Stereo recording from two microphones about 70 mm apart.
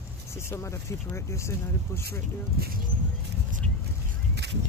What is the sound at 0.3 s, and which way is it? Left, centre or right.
Speech, left.